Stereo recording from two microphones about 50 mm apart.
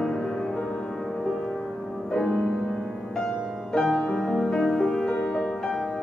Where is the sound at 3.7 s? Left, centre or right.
Centre.